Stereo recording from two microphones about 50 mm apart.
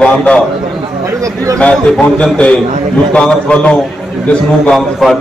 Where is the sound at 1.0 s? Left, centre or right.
Right.